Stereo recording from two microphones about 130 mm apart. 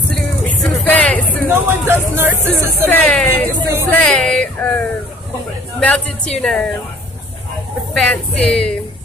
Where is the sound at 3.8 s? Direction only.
10° left (ahead or behind).